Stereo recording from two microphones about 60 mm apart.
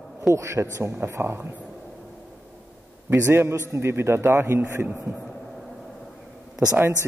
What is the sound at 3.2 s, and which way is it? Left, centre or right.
A man's voice, right.